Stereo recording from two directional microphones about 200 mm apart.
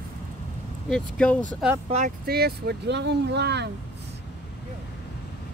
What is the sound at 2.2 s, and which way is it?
Speech, 50° right (ahead or behind).